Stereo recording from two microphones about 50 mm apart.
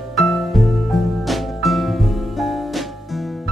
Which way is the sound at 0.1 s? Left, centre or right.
Centre.